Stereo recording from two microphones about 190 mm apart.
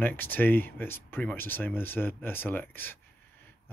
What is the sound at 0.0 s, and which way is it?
Speech, 10° left (ahead or behind).